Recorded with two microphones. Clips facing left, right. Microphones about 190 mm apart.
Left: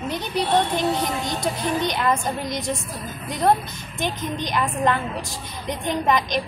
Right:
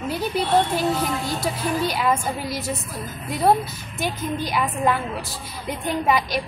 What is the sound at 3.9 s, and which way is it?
A woman's voice, 5° right (ahead or behind).